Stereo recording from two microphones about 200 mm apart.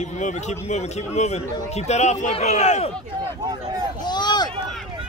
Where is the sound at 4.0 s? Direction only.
20° left (ahead or behind).